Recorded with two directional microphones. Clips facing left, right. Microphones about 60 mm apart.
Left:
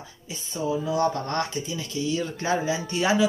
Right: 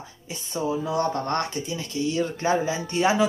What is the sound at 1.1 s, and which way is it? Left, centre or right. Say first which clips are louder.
Speech: right 1 dB; right.